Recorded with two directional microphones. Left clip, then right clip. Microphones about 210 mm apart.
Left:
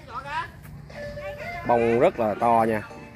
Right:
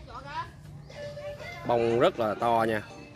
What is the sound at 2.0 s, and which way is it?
Speech, 5° right (ahead or behind).